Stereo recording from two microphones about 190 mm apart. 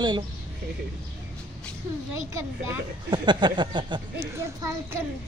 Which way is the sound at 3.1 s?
25° right (ahead or behind).